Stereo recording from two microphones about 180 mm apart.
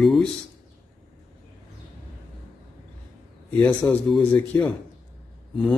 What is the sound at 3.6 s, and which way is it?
Speech, 5° left (ahead or behind).